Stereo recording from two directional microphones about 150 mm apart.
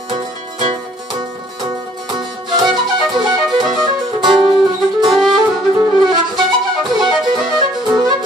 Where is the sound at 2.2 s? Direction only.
30° right (ahead or behind).